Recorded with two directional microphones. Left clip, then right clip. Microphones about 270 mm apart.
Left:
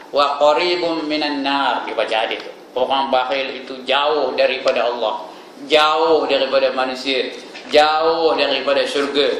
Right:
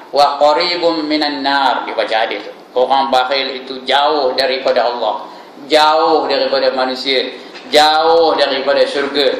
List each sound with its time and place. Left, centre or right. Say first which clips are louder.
0.1 s a man's voice: right 4 dB; centre